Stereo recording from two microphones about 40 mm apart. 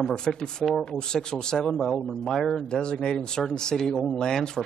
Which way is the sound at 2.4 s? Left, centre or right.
Centre.